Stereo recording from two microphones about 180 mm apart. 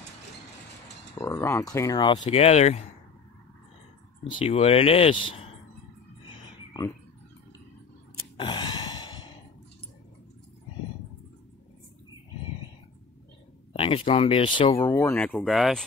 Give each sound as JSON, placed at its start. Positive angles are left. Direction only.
{"t": 1.1, "sound": "speech", "side_deg": 15}
{"t": 2.2, "sound": "speech", "side_deg": 35}
{"t": 4.2, "sound": "speech", "side_deg": 35}
{"t": 8.4, "sound": "a sound", "side_deg": 25}
{"t": 13.7, "sound": "speech", "side_deg": 30}